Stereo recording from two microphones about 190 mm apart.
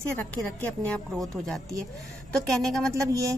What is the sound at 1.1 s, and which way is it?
Speech, centre (ahead or behind).